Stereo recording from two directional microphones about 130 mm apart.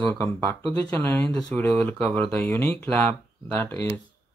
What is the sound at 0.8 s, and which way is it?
Speech, 15° left (ahead or behind).